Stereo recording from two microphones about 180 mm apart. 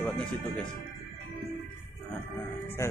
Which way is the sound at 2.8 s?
15° left (ahead or behind).